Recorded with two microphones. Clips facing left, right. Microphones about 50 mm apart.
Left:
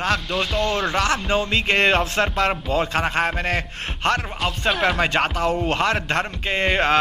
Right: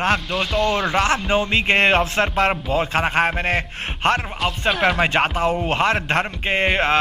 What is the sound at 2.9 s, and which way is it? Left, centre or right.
Speech, right.